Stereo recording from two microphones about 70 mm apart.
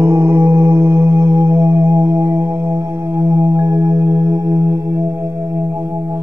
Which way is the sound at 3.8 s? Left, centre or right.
Right.